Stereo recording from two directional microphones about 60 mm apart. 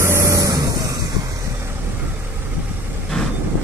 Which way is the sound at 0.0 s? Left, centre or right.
Right.